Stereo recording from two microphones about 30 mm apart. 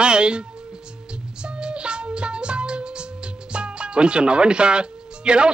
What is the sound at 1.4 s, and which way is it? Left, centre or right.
Music, right.